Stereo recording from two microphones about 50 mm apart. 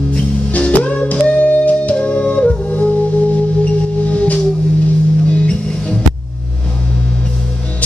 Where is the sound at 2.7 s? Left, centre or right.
Left.